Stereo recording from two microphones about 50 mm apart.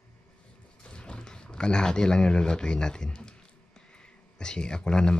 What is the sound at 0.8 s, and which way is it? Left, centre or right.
Speech, left.